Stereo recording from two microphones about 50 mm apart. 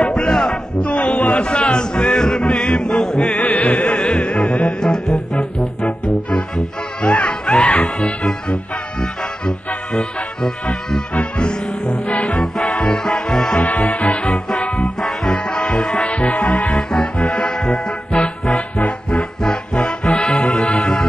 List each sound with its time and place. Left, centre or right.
0.1 s music: centre
0.8 s a sound: left
1.4 s music: centre
3.3 s music: left
4.0 s music: centre
4.7 s music: centre
5.4 s music: left
11.1 s music: left
12.0 s music: left
12.4 s music: centre
13.6 s music: left
15.0 s music: centre
16.2 s music: left
16.7 s music: centre